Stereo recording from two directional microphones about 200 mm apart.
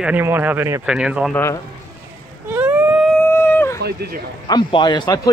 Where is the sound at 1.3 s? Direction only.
15° left (ahead or behind).